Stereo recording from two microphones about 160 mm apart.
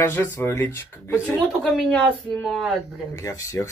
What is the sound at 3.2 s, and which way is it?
Speech, 20° left (ahead or behind).